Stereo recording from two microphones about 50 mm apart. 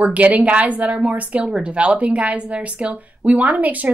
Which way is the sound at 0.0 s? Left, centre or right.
Right.